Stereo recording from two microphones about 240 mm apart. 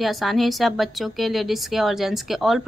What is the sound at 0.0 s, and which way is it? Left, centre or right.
A woman's voice, centre.